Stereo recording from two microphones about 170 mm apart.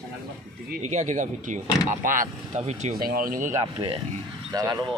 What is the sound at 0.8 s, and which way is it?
Speech, 45° right (ahead or behind).